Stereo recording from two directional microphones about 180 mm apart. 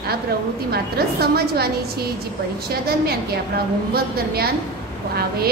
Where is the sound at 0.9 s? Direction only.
60° right (ahead or behind).